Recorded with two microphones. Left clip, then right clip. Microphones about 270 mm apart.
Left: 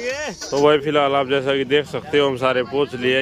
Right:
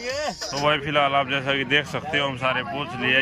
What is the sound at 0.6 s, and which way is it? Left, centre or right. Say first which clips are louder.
A man's voice: left 4 dB; centre.